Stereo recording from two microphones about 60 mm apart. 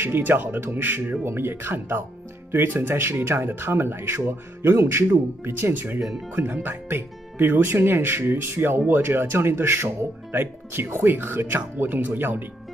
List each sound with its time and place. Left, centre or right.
0.0 s speech: right